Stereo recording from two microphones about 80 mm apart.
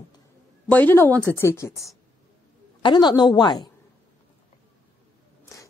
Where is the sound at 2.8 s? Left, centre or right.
Left.